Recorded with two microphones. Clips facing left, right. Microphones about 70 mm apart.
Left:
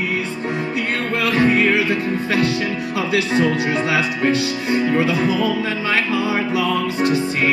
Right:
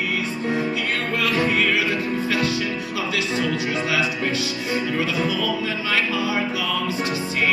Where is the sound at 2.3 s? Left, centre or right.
Left.